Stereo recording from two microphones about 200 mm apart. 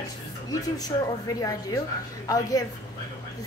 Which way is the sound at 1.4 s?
15° left (ahead or behind).